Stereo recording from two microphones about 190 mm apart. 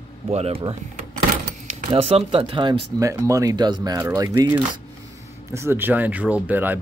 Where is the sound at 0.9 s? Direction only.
45° right (ahead or behind).